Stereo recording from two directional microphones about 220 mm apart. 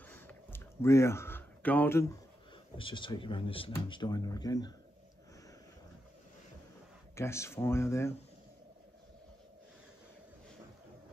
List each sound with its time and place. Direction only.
0.0 s a sound: 10° left (ahead or behind)
2.8 s speech: 20° left (ahead or behind)
7.2 s speech: 10° left (ahead or behind)